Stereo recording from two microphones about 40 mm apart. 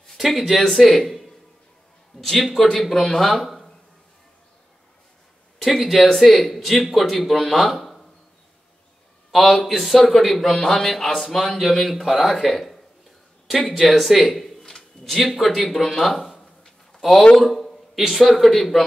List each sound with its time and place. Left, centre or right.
0.2 s a man's voice: centre
5.6 s a man's voice: centre
7.7 s a sound: centre
9.3 s a man's voice: centre
14.7 s a sound: centre
15.2 s a man's voice: centre
16.3 s a sound: centre
17.4 s a man's voice: centre
17.9 s a man's voice: centre